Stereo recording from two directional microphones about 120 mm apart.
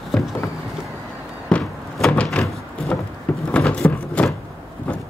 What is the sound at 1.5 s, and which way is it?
Door, 10° left (ahead or behind).